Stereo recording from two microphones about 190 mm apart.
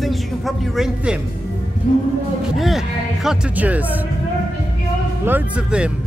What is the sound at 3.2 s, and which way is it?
Speech, 10° right (ahead or behind).